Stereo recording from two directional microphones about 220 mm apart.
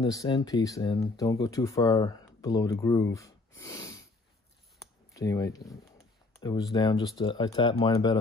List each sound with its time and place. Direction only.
0.0 s speech: 15° left (ahead or behind)
5.1 s speech: 15° left (ahead or behind)